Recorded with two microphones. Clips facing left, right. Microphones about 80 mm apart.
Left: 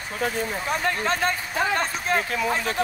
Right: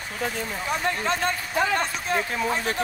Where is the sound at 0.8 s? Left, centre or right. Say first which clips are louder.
Left 1 dB; left.